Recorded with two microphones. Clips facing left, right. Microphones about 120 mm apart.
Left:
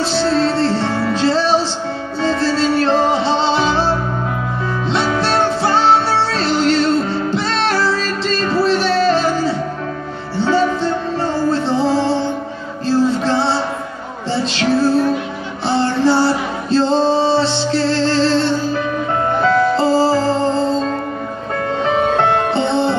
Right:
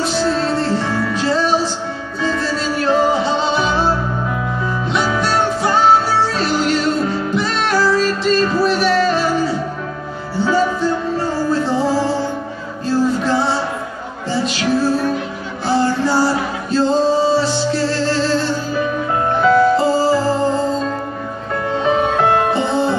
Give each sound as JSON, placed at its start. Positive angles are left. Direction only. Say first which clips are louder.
{"t": 0.0, "sound": "music", "louder": "left 2 dB", "side_deg": 30}
{"t": 4.9, "sound": "music", "louder": "left 1 dB", "side_deg": 30}
{"t": 19.8, "sound": "music", "louder": "left 1 dB", "side_deg": 30}
{"t": 22.5, "sound": "music", "louder": "left 1 dB", "side_deg": 30}